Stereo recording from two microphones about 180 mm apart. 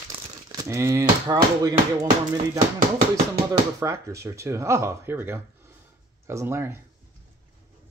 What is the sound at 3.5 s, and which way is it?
Speech, 15° right (ahead or behind).